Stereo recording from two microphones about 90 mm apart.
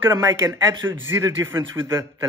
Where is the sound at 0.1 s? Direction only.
35° right (ahead or behind).